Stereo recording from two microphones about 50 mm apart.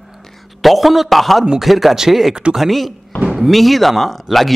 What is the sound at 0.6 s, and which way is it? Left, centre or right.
A man's voice, centre.